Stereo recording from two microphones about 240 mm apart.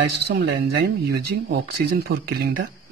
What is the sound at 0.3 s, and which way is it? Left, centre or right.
Speech, right.